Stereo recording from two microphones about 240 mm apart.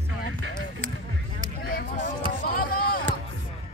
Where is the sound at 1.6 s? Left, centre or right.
Left.